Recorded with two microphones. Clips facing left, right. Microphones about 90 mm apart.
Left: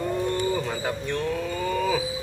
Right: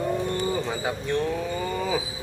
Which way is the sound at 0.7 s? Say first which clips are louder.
Right 1 dB; 10° right (ahead or behind).